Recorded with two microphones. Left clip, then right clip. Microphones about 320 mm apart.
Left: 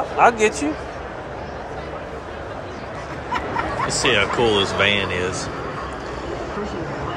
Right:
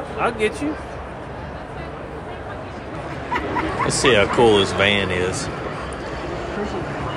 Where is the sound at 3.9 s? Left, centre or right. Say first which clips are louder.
Right 3 dB; centre.